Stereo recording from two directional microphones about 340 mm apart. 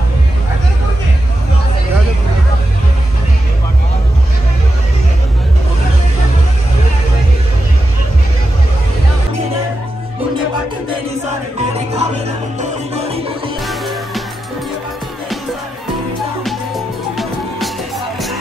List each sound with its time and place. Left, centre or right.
11.7 s music: centre
13.7 s music: centre
16.4 s music: centre